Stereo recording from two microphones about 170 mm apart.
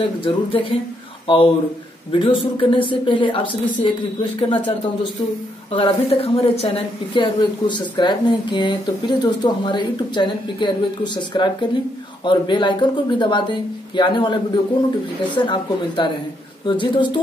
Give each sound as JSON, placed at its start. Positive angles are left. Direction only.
{"t": 0.0, "sound": "a woman's voice", "side_deg": 30}